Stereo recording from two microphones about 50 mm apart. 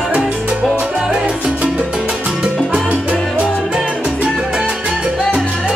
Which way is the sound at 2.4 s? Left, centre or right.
Right.